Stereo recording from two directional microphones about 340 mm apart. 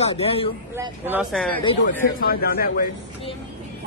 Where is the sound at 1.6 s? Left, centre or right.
Centre.